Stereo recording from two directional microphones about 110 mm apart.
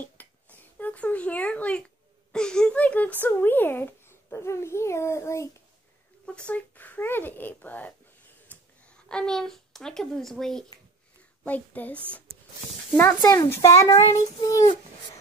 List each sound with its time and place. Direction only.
0.0 s a sound: 15° left (ahead or behind)
2.3 s speech: 5° left (ahead or behind); by 5.5 s 25° left (ahead or behind)
6.2 s a child's voice: 10° left (ahead or behind)
11.4 s a child's voice: 15° left (ahead or behind)
13.2 s a child's voice: 30° left (ahead or behind)